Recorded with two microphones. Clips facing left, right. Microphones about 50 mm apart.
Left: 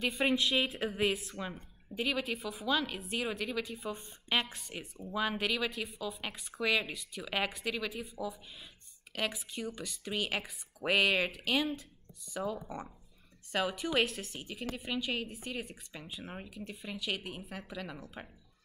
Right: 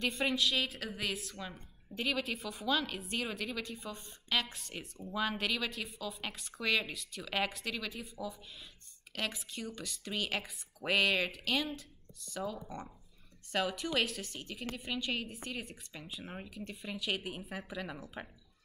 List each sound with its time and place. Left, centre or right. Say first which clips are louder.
0.2 s a woman's voice: left 4 dB; centre
3.9 s speech: left 2 dB; left
4.5 s a woman's voice: left 1 dB; centre